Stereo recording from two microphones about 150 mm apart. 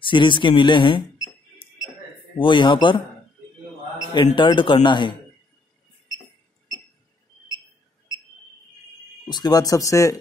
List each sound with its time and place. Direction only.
0.0 s speech: 35° left (ahead or behind)
2.3 s speech: 35° left (ahead or behind)
4.4 s speech: 35° left (ahead or behind)
9.3 s speech: 25° left (ahead or behind)